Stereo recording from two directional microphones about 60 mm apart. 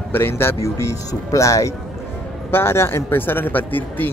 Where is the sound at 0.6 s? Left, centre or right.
Left.